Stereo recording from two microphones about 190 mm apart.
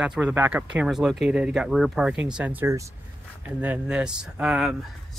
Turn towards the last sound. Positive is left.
turn(degrees=-5)  # may be behind; listen again after turning